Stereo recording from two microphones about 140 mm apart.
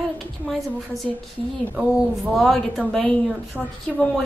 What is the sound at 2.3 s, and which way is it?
Speech, centre (ahead or behind).